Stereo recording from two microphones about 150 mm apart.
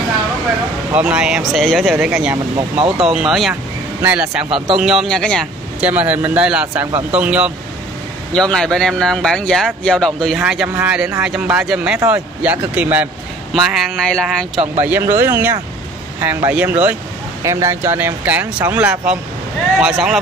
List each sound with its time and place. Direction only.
0.9 s speech: 5° right (ahead or behind)
2.5 s speech: 35° right (ahead or behind)
3.0 s speech: 5° right (ahead or behind)
4.5 s speech: 35° right (ahead or behind)
4.7 s speech: centre (ahead or behind)
5.8 s speech: 10° right (ahead or behind)
8.3 s speech: 5° left (ahead or behind); by 13.1 s 10° right (ahead or behind)
14.0 s speech: 5° left (ahead or behind)
14.8 s speech: 15° right (ahead or behind)